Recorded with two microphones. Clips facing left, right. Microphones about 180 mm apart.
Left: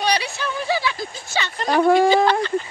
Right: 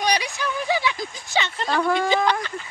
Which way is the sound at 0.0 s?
15° right (ahead or behind).